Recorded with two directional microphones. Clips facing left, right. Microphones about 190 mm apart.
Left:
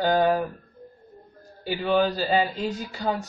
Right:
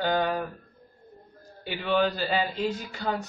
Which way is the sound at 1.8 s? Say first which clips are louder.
Left 2 dB; 35° left (ahead or behind).